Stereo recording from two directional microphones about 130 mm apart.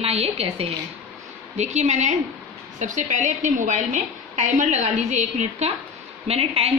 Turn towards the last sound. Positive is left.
turn(degrees=-50)  # may be behind; listen again after turning